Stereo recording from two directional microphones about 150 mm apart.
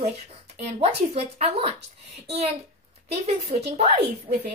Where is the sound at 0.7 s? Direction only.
40° right (ahead or behind).